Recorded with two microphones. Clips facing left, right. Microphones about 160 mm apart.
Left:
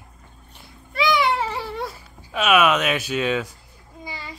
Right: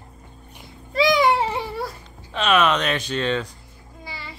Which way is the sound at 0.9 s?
40° right (ahead or behind).